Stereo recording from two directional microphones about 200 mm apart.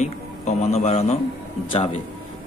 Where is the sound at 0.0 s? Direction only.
35° left (ahead or behind).